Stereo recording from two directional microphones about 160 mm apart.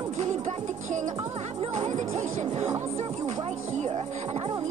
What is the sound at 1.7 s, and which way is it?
Speech, 45° right (ahead or behind).